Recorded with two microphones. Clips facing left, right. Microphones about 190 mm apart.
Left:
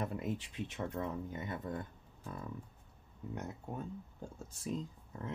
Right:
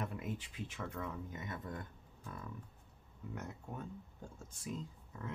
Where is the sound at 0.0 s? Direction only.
35° left (ahead or behind).